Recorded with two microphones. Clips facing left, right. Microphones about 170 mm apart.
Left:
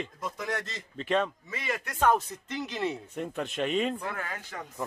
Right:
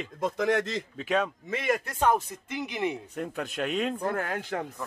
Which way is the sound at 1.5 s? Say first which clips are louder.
Right 7 dB; 60° right (ahead or behind).